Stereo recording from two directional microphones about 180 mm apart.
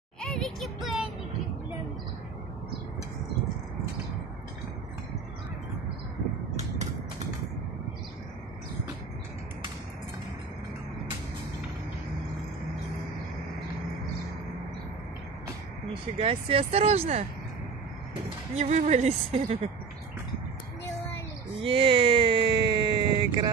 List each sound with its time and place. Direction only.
0.2 s music: 5° left (ahead or behind)
16.2 s a woman's voice: 30° right (ahead or behind)
18.6 s a woman's voice: 40° right (ahead or behind)
21.5 s a sound: 30° right (ahead or behind)